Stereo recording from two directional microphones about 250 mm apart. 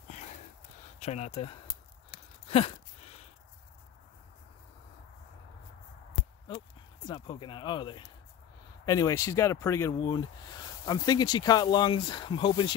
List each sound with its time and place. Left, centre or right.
0.9 s speech: left
2.4 s a sound: left
7.1 s speech: centre